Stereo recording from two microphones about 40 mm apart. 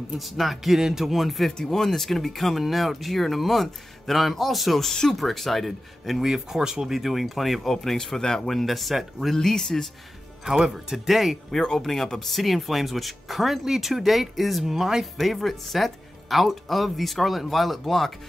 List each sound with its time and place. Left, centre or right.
0.2 s speech: centre
0.7 s speech: centre
1.6 s speech: centre
6.2 s speech: centre
6.9 s speech: centre
7.7 s speech: centre
9.3 s speech: centre
10.4 s speech: centre
11.5 s speech: centre
15.1 s speech: centre